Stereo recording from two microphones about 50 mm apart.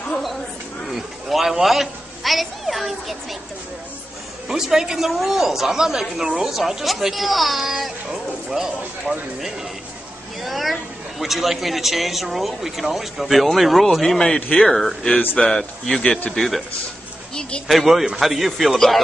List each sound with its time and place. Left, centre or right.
0.9 s a child's voice: centre
4.5 s a woman's voice: centre
10.4 s a man's voice: centre
13.9 s a man's voice: centre
16.3 s a man's voice: centre
17.6 s a man's voice: centre